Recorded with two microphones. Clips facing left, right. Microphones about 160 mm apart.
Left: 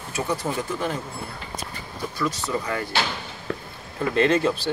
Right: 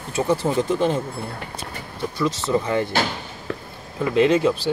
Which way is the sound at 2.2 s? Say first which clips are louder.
Right 5 dB; 25° right (ahead or behind).